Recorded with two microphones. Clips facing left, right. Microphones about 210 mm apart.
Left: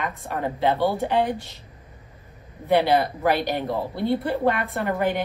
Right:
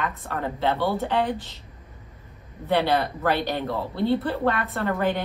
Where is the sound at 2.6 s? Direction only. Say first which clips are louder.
Left 3 dB; 15° left (ahead or behind).